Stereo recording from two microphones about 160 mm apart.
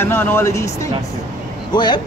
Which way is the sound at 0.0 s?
15° left (ahead or behind).